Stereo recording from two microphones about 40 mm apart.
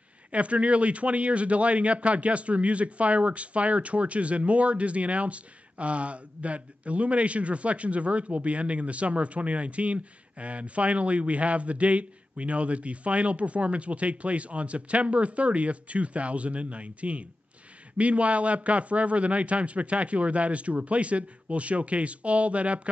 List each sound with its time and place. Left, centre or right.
0.3 s speech: right